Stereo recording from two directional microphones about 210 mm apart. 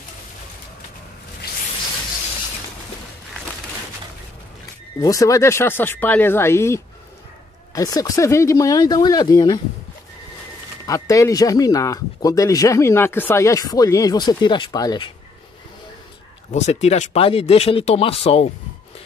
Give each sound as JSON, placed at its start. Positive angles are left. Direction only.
{"t": 5.0, "sound": "speech", "side_deg": 15}
{"t": 10.9, "sound": "speech", "side_deg": 15}
{"t": 16.5, "sound": "speech", "side_deg": 35}